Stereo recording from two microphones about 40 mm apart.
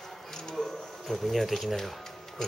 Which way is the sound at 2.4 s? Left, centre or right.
Centre.